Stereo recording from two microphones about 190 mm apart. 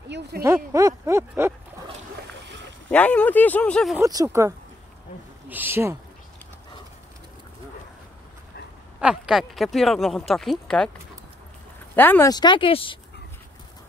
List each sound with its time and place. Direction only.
0.4 s speech: 15° right (ahead or behind)
2.9 s speech: 5° left (ahead or behind)
4.0 s speech: 15° right (ahead or behind)
9.0 s speech: 5° right (ahead or behind)
11.9 s speech: 10° left (ahead or behind); by 13.0 s 25° left (ahead or behind)